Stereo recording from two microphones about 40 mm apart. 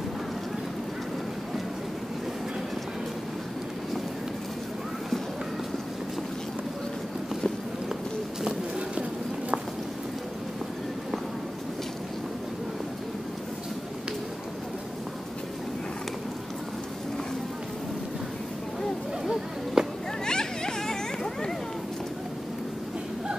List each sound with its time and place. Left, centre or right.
19.8 s cat: centre
20.2 s children playing: centre